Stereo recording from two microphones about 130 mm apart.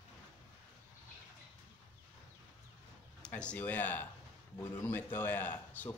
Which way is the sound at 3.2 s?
10° left (ahead or behind).